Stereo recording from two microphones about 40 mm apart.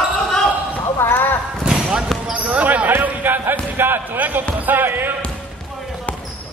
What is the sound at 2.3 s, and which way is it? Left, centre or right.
Basketball bounce, right.